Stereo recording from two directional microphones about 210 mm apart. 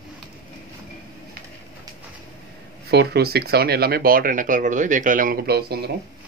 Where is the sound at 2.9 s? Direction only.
50° right (ahead or behind).